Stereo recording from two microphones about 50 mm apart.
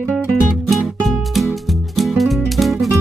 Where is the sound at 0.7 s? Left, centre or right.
Centre.